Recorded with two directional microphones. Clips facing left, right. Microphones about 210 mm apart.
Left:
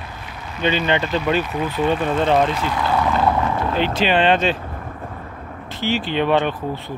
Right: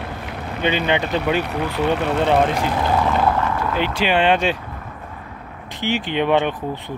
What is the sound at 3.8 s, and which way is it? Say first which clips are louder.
Speech: left 1 dB; 10° right (ahead or behind).